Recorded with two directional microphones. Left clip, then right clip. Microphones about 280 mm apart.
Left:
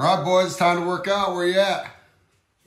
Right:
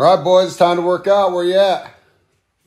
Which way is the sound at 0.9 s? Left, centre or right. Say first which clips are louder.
Right 8 dB; centre.